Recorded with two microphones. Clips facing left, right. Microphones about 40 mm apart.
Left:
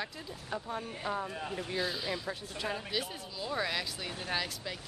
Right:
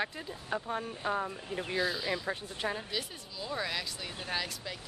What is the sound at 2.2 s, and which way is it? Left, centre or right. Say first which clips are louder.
Speech: right 2 dB; right.